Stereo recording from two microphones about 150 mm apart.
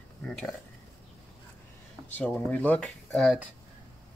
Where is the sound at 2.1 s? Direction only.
10° left (ahead or behind).